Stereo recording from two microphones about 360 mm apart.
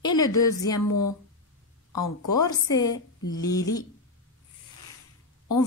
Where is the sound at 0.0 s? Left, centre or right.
Centre.